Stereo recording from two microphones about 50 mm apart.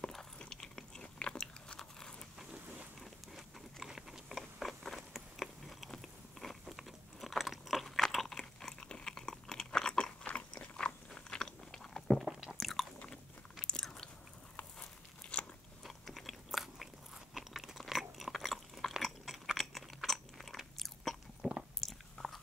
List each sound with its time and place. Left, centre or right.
0.4 s biting: centre
3.0 s a sound: centre
4.4 s biting: centre
6.4 s crunch: centre
10.2 s crunch: left
12.1 s chewing: centre
12.5 s chewing: centre
13.0 s biting: centre
14.6 s a sound: left
15.8 s crunch: centre
20.1 s biting: centre